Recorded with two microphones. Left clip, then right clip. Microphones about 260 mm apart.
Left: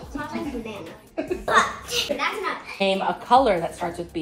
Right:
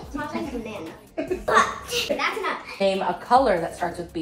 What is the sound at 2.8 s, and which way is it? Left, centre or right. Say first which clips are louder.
Speech: even; left.